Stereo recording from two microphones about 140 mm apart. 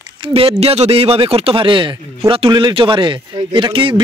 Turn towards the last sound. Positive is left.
turn(degrees=-35)  # may be behind; listen again after turning